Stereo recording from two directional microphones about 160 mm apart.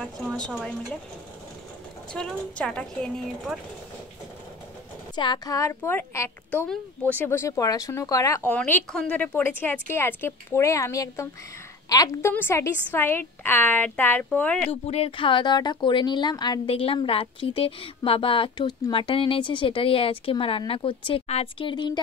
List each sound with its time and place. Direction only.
0.0 s a woman's voice: 5° left (ahead or behind)
2.1 s a woman's voice: 5° left (ahead or behind)
5.1 s a woman's voice: 30° left (ahead or behind); by 14.7 s 10° left (ahead or behind)
14.7 s speech: 40° left (ahead or behind)